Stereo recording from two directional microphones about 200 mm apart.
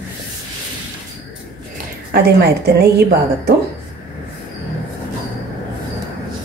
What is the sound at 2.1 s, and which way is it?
Speech, 50° right (ahead or behind).